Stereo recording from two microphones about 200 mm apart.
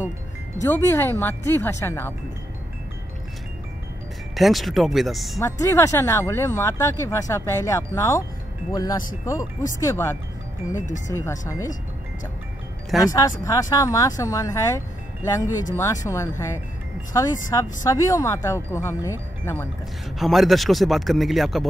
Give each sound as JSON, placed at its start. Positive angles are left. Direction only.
{"t": 0.6, "sound": "speech", "side_deg": 15}
{"t": 4.4, "sound": "a man's voice", "side_deg": 0}
{"t": 5.4, "sound": "speech", "side_deg": 15}
{"t": 13.0, "sound": "speech", "side_deg": 20}
{"t": 20.2, "sound": "a man's voice", "side_deg": 0}